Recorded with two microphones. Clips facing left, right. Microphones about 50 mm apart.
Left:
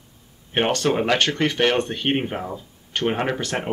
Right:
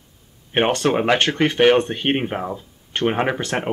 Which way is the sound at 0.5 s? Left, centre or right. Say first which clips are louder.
Right 2 dB; centre.